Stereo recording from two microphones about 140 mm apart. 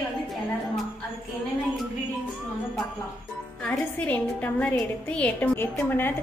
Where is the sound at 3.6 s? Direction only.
10° left (ahead or behind).